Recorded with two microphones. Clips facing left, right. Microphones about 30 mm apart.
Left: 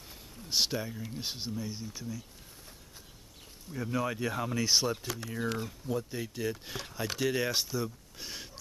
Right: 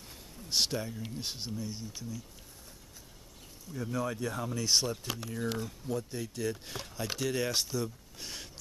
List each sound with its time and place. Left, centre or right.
0.1 s a sound: centre
1.1 s speech: centre
3.7 s speech: centre
4.6 s speech: centre
5.2 s speech: centre
5.6 s speech: centre